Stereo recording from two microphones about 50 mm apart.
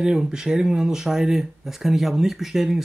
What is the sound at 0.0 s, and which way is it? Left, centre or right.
Speech, centre.